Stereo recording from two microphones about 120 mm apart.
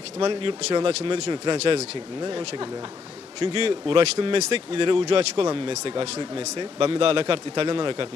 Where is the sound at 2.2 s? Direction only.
40° right (ahead or behind).